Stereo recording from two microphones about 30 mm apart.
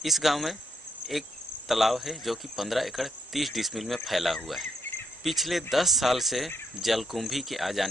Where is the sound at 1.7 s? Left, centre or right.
Centre.